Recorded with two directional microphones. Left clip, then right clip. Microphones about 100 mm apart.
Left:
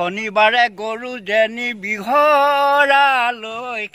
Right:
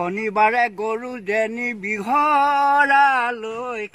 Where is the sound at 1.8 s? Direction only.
55° left (ahead or behind).